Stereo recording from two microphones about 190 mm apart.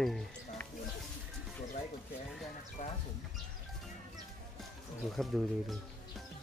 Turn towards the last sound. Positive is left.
turn(degrees=0)  # may be behind; listen again after turning